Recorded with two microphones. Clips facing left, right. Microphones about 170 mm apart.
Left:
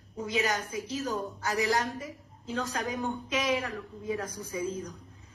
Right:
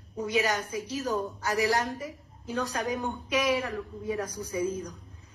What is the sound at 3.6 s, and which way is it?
A woman's voice, 20° right (ahead or behind).